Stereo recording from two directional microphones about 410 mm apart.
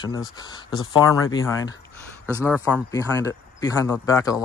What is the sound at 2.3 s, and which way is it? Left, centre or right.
Speech, centre.